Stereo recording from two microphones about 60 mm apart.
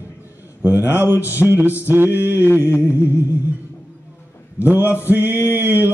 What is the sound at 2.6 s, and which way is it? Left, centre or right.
Music, left.